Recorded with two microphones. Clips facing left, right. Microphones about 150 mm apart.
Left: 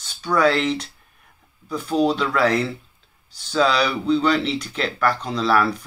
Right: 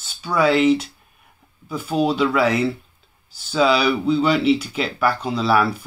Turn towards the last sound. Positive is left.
turn(degrees=-5)  # may be behind; listen again after turning